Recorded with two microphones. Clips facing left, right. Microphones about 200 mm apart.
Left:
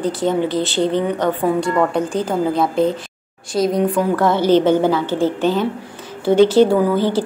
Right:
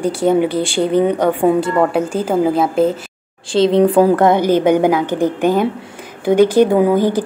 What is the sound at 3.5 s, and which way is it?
Speech, 30° right (ahead or behind).